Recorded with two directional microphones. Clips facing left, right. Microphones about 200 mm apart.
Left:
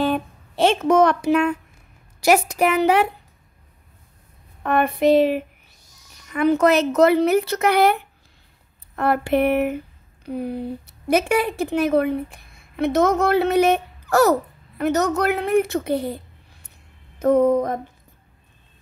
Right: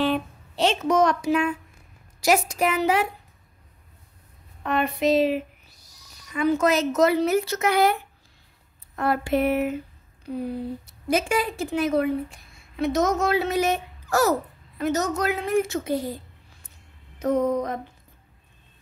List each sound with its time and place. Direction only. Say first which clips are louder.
0.0 s a woman's voice: left 2 dB; 50° left (ahead or behind)
4.6 s a woman's voice: left 5 dB; 55° left (ahead or behind)
5.8 s owl: left 1 dB; 35° right (ahead or behind)
6.3 s a woman's voice: left 4 dB; 60° left (ahead or behind)
17.2 s a woman's voice: left 6 dB; 55° left (ahead or behind)